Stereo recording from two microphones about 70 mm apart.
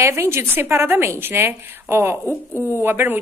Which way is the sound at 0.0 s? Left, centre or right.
Right.